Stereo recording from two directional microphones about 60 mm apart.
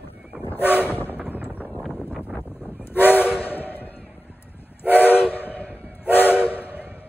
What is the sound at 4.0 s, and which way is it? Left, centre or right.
Vehicle, centre.